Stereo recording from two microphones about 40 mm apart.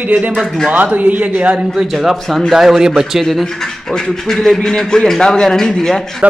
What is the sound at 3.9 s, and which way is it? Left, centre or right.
A man's voice, centre.